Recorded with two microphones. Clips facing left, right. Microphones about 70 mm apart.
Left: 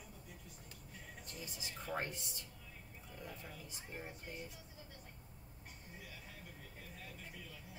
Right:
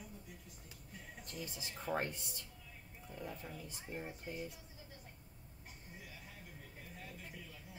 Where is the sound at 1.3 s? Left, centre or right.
Right.